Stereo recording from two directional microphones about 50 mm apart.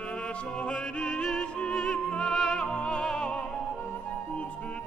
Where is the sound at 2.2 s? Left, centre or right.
Centre.